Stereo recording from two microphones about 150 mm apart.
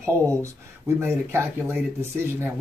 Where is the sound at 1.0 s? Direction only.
15° right (ahead or behind).